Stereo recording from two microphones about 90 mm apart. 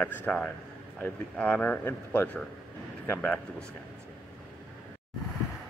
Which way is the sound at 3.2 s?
10° left (ahead or behind).